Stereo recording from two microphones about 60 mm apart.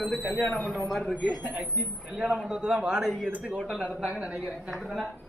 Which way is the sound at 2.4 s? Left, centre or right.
Centre.